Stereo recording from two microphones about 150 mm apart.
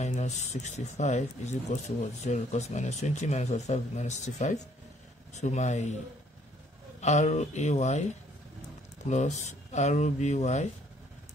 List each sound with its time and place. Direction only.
0.0 s speech: 50° left (ahead or behind)
7.0 s speech: 50° left (ahead or behind)